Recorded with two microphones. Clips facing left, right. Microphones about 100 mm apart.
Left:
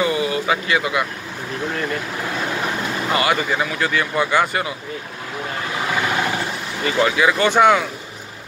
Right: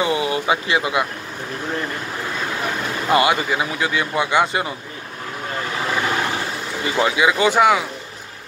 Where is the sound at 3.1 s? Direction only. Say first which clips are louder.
Right 3 dB; 20° right (ahead or behind).